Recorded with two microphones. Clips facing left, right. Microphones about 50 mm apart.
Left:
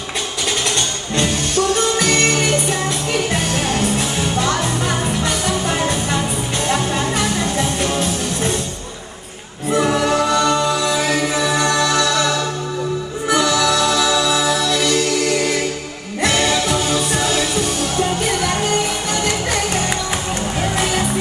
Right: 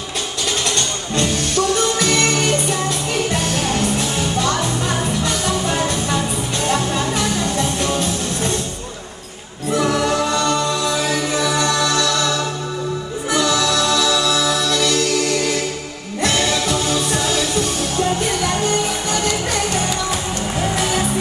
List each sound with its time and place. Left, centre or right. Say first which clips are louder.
2.0 s music: left 1 dB; left
9.8 s music: left 2 dB; centre
13.5 s music: left 1 dB; left